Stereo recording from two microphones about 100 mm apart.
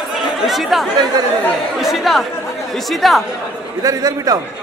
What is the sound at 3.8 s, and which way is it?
Speech, 40° right (ahead or behind).